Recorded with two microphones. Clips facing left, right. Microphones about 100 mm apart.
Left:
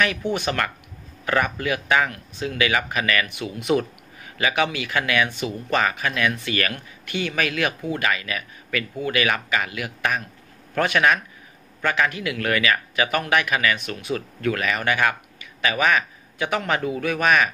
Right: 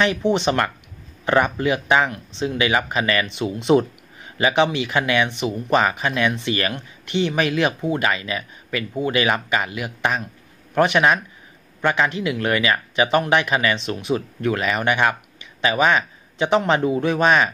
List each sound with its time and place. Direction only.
0.0 s speech: 25° right (ahead or behind)